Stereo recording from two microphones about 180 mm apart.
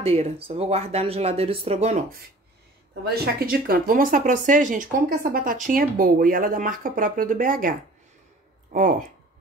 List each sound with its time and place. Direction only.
0.0 s speech: 35° right (ahead or behind)
2.9 s speech: 60° right (ahead or behind)